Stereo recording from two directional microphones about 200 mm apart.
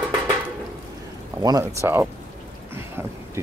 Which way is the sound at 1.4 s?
20° right (ahead or behind).